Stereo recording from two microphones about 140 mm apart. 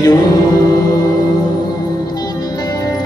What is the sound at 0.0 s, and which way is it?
Music, 30° left (ahead or behind).